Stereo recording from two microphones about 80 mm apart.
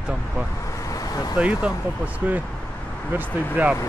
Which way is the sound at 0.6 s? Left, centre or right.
Left.